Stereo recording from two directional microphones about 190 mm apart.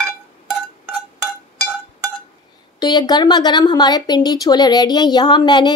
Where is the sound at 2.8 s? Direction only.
20° left (ahead or behind).